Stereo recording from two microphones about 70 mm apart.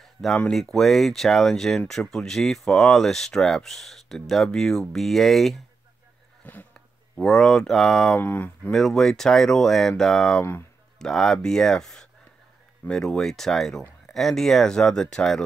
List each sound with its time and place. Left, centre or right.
0.5 s speech: centre
6.4 s speech: left
7.2 s speech: centre
8.2 s speech: left
8.6 s speech: centre